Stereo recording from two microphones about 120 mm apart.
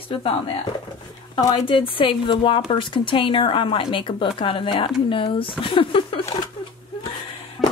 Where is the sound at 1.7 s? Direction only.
45° left (ahead or behind).